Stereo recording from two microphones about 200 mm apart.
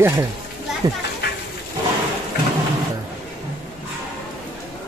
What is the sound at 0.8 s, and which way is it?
Speech, 20° right (ahead or behind).